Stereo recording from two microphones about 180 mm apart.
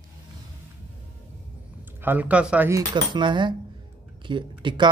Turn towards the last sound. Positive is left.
turn(degrees=-25)  # may be behind; listen again after turning